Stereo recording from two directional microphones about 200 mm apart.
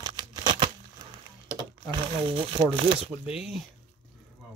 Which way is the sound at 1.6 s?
25° right (ahead or behind).